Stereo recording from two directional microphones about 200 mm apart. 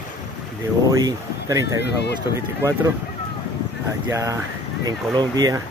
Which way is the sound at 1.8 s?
55° left (ahead or behind).